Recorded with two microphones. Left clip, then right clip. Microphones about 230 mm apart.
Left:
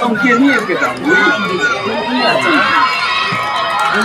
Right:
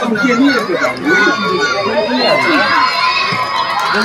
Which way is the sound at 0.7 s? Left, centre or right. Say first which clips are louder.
Even; centre.